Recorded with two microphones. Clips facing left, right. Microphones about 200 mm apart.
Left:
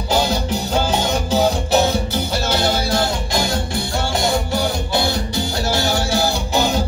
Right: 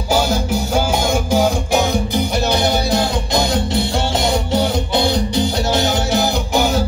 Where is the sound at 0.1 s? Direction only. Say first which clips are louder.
Right 2 dB; 10° right (ahead or behind).